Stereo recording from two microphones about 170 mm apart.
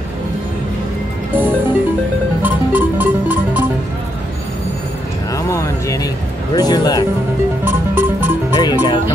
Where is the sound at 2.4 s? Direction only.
10° right (ahead or behind).